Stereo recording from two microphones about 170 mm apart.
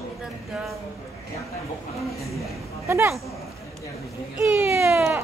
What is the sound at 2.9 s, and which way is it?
Speech, 15° right (ahead or behind).